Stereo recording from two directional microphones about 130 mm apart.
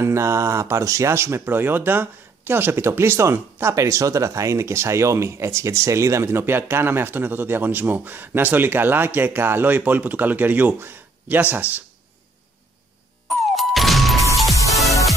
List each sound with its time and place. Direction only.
0.0 s speech: 20° right (ahead or behind)
13.6 s music: centre (ahead or behind)